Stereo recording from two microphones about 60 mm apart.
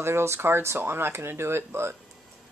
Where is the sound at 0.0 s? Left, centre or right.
Right.